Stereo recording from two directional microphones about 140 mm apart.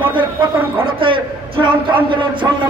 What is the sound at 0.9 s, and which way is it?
Speech, 40° right (ahead or behind).